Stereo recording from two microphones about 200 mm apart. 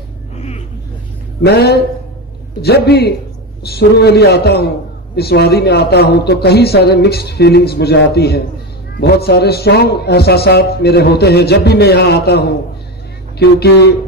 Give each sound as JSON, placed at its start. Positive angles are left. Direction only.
{"t": 1.4, "sound": "a man's voice", "side_deg": 55}